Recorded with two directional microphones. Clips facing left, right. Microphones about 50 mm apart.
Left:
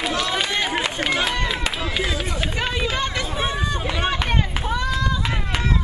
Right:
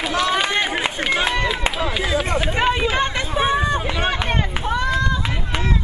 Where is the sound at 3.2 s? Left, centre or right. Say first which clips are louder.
Right 5 dB; centre.